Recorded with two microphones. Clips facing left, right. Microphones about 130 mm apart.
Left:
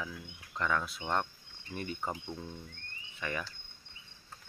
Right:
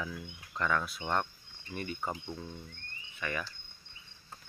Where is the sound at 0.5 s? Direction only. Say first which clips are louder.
Right 1 dB; 15° left (ahead or behind).